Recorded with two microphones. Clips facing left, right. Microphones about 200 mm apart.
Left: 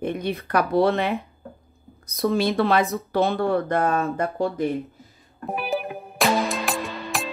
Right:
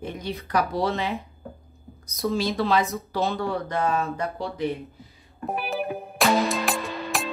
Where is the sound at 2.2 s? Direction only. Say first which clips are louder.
Left 4 dB; 60° left (ahead or behind).